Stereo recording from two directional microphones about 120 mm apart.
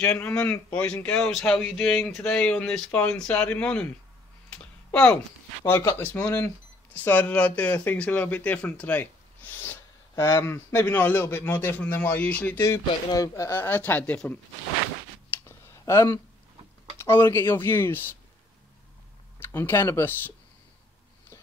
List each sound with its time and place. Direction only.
0.0 s speech: 10° left (ahead or behind)
4.5 s a sound: 10° left (ahead or behind)
5.7 s speech: 20° left (ahead or behind)
12.5 s speech: 25° left (ahead or behind)
15.4 s a sound: 20° left (ahead or behind)
17.0 s speech: 20° left (ahead or behind)
19.5 s speech: 20° left (ahead or behind)